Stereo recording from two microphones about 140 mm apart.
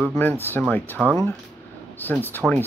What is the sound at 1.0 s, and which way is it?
Speech, 5° right (ahead or behind).